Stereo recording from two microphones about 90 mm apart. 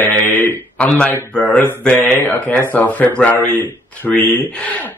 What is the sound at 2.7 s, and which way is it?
Speech, 15° left (ahead or behind).